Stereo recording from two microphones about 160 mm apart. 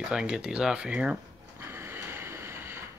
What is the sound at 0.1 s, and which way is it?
Speech, 5° right (ahead or behind).